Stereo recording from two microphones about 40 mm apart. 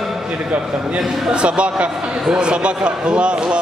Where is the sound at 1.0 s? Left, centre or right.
Centre.